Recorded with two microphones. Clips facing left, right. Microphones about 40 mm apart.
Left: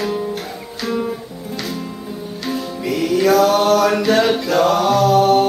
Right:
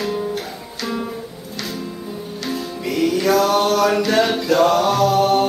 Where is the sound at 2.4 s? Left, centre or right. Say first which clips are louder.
Left 2 dB; centre.